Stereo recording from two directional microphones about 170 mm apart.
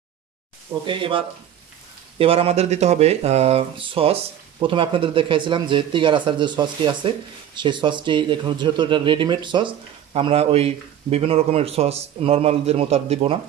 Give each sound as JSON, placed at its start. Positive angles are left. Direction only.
{"t": 0.8, "sound": "speech", "side_deg": -30}